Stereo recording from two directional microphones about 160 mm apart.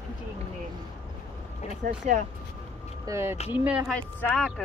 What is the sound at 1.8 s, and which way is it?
Speech, 50° right (ahead or behind).